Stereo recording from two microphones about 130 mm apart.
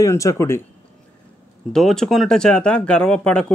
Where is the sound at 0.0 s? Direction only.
25° left (ahead or behind).